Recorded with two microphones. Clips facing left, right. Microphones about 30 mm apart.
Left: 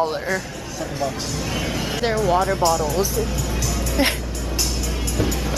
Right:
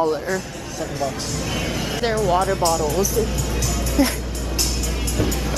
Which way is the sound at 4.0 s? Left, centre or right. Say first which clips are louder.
Right 1 dB; left.